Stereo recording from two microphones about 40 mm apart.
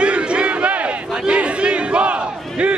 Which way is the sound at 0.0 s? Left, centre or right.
Right.